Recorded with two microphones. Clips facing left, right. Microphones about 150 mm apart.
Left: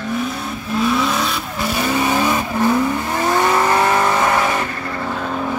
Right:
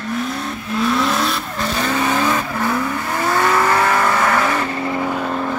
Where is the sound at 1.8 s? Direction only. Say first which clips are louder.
Left 1 dB; 15° left (ahead or behind).